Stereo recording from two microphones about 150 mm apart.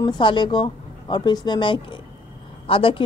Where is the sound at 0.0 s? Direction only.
30° left (ahead or behind).